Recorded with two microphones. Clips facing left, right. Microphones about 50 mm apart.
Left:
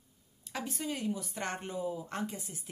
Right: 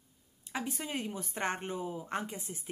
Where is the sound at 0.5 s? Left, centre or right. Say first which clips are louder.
Even; right.